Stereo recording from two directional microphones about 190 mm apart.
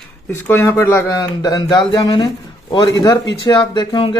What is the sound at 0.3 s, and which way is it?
A man's voice, 10° left (ahead or behind).